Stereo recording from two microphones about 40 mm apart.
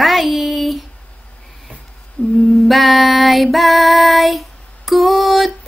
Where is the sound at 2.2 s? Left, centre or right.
Left.